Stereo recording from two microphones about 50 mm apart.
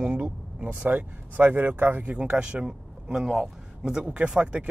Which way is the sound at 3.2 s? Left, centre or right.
Centre.